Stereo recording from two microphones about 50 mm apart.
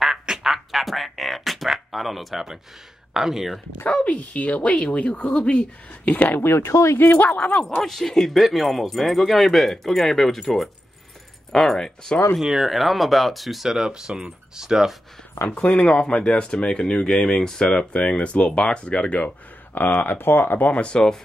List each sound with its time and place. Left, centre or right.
0.0 s quack: centre
3.1 s speech: centre
3.8 s speech: left
6.1 s speech: left
6.6 s speech: left
7.1 s speech: left
7.8 s speech: centre
12.4 s speech: centre
15.3 s speech: left
15.6 s speech: left
19.7 s speech: left
20.8 s speech: centre